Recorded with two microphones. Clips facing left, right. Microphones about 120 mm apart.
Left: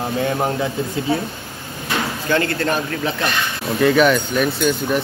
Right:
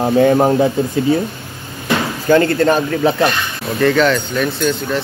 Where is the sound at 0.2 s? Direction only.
55° right (ahead or behind).